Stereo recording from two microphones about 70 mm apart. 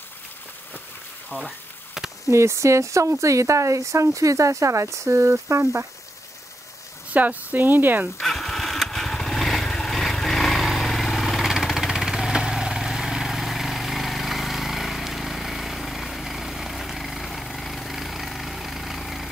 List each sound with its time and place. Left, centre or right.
1.3 s speech: left
2.2 s speech: right
7.1 s speech: right
8.2 s motorcycle: centre